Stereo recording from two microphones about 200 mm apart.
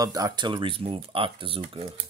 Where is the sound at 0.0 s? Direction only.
20° right (ahead or behind).